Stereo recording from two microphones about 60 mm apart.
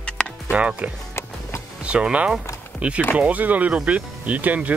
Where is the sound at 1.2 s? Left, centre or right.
Left.